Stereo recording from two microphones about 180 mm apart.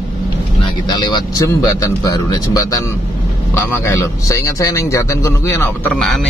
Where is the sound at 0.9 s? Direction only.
25° left (ahead or behind).